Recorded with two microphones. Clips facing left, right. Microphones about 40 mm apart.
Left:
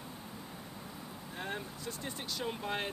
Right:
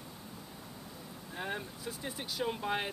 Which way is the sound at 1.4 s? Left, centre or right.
Centre.